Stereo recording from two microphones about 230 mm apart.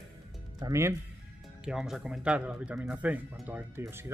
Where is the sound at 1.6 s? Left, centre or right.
Centre.